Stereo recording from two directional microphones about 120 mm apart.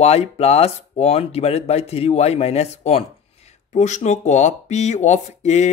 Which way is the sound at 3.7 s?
75° left (ahead or behind).